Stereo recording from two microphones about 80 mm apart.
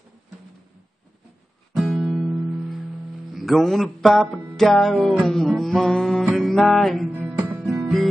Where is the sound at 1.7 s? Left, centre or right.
Centre.